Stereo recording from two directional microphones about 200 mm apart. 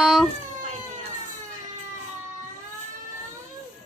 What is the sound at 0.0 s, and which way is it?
Cat, 5° right (ahead or behind).